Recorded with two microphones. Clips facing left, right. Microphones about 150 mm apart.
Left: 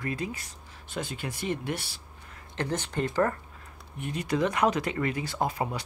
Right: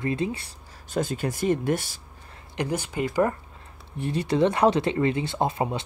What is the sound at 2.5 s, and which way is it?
Speech, 10° right (ahead or behind).